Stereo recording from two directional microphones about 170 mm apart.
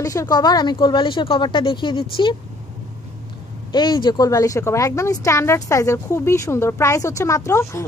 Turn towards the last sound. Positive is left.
turn(degrees=20)  # may be behind; listen again after turning